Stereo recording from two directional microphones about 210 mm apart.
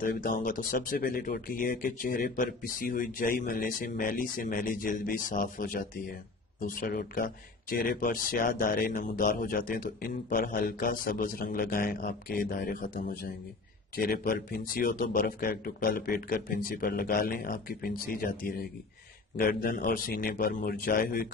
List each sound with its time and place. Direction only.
0.0 s speech: 40° left (ahead or behind)